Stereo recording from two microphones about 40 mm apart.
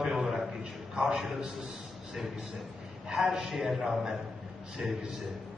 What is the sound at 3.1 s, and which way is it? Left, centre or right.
A man's voice, centre.